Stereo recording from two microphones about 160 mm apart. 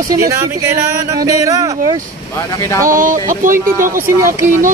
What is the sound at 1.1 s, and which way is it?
Speech, 25° right (ahead or behind).